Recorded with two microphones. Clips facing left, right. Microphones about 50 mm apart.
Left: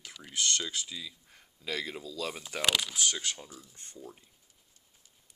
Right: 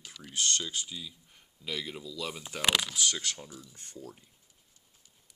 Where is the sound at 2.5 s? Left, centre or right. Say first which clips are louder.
Left 1 dB; left.